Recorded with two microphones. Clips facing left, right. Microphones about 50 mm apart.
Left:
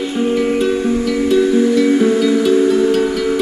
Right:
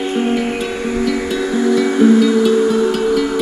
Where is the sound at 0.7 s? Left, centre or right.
Right.